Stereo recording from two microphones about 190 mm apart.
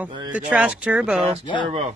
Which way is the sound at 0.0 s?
5° right (ahead or behind).